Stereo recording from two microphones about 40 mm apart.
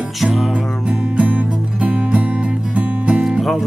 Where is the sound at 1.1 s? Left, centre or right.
Right.